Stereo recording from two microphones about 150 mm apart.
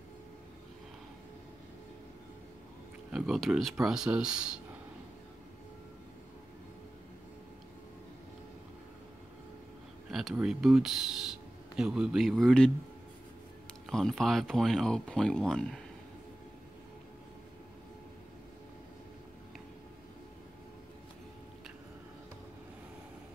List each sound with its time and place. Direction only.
3.1 s speech: centre (ahead or behind)
10.1 s speech: 5° right (ahead or behind)
13.8 s speech: 5° left (ahead or behind)